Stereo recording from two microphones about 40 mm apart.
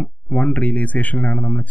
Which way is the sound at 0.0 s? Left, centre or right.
Left.